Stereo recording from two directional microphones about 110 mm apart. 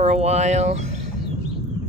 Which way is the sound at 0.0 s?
80° right.